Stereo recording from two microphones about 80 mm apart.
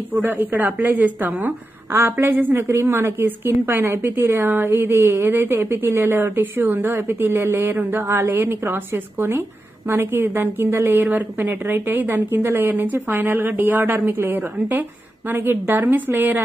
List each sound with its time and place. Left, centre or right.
0.2 s a woman's voice: right
1.9 s a woman's voice: right